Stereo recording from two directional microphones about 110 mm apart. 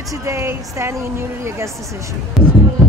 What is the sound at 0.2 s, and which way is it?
A woman's voice, 25° right (ahead or behind).